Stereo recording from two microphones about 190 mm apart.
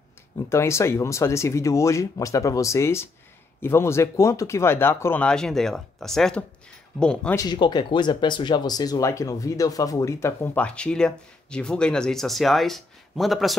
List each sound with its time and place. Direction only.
0.4 s speech: 15° left (ahead or behind)
7.3 s speech: 25° left (ahead or behind); by 13.6 s centre (ahead or behind)